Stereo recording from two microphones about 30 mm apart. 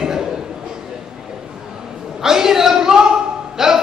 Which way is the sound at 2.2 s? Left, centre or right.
Centre.